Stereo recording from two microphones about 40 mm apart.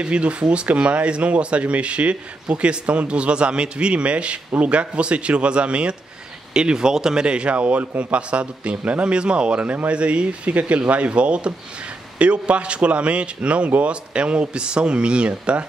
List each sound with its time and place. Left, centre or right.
0.0 s speech: right
7.2 s speech: right